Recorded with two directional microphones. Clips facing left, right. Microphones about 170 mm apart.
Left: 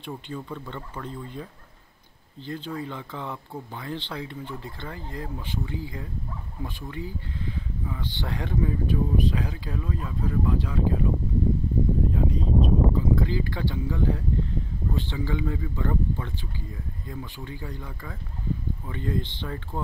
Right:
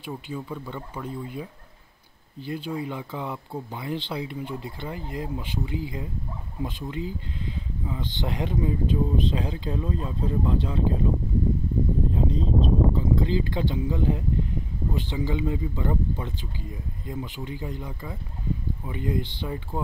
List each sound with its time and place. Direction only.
0.0 s speech: 10° right (ahead or behind); by 11.1 s 25° right (ahead or behind)
12.1 s speech: 25° right (ahead or behind)